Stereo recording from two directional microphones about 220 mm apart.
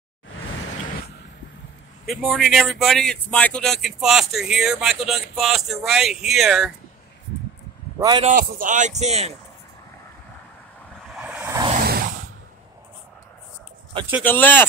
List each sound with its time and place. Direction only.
2.0 s speech: centre (ahead or behind)
8.0 s a man's voice: 20° right (ahead or behind)
8.3 s speech: 35° right (ahead or behind)
11.1 s a sound: 5° right (ahead or behind)
11.7 s a sound: 45° right (ahead or behind)
14.2 s speech: 10° left (ahead or behind)